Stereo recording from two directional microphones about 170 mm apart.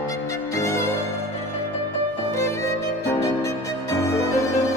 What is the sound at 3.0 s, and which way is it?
Violin, 15° left (ahead or behind).